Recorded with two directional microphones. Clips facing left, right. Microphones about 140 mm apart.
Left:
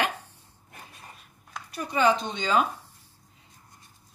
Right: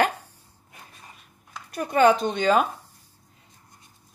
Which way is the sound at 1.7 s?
50° right (ahead or behind).